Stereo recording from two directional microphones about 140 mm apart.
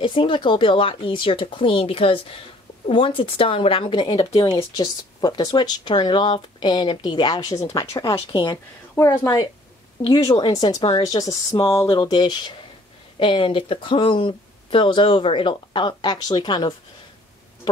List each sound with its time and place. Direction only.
0.0 s speech: 35° left (ahead or behind)